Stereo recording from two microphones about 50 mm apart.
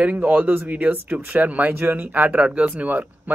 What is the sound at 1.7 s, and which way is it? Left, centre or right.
Speech, right.